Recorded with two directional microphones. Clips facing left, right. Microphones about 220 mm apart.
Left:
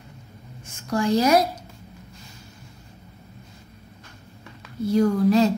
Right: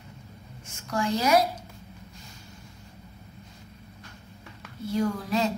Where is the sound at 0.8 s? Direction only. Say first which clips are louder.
Left 6 dB; 35° left (ahead or behind).